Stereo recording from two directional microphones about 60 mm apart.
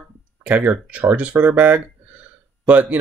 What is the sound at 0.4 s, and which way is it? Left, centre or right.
Speech, right.